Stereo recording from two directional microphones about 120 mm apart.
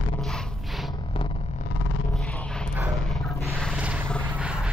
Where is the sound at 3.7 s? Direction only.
10° right (ahead or behind).